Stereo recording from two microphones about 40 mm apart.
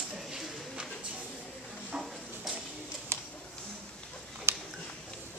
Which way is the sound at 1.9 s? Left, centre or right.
Centre.